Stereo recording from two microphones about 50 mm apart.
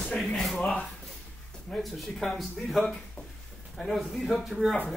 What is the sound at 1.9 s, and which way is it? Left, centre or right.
Speech, centre.